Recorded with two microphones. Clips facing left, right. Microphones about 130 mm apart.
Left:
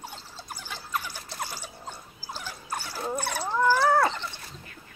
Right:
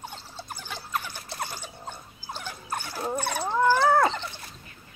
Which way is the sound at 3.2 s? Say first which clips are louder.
Right 2 dB; 20° right (ahead or behind).